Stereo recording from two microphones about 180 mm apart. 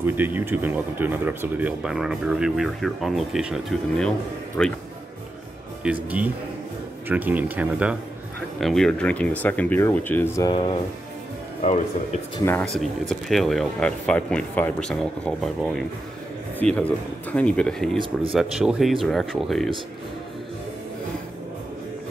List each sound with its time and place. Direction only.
0.0 s speech: 10° right (ahead or behind); by 4.7 s 5° left (ahead or behind)
6.0 s speech: 10° right (ahead or behind); by 10.5 s 15° left (ahead or behind)
11.6 s speech: 40° left (ahead or behind)
12.4 s speech: 10° left (ahead or behind)
13.1 s speech: centre (ahead or behind)